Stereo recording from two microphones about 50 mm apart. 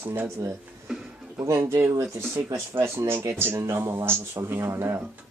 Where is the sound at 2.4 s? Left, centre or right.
Right.